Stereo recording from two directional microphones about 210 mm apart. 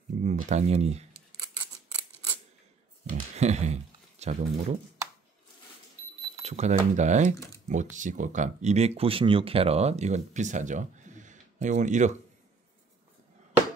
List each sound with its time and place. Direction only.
0.2 s speech: 35° right (ahead or behind)
3.1 s speech: 30° right (ahead or behind)
6.4 s speech: 30° right (ahead or behind)